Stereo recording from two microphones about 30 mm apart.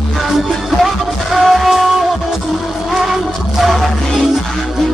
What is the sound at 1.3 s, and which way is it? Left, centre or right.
Music, centre.